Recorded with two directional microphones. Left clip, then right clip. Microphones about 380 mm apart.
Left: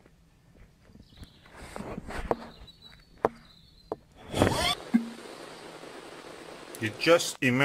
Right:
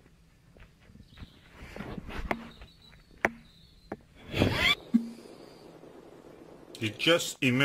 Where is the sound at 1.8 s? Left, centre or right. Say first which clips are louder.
Left 3 dB; left.